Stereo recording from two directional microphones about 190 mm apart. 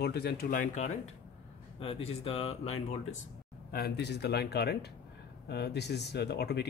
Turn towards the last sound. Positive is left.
turn(degrees=60)  # may be behind; listen again after turning